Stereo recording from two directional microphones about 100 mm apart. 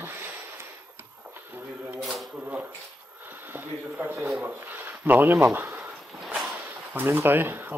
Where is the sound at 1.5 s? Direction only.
20° right (ahead or behind).